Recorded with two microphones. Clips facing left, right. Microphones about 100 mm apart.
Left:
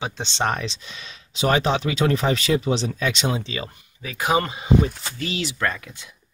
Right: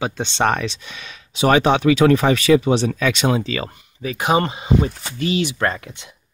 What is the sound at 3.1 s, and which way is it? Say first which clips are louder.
Speech: right 6 dB; 60° right (ahead or behind).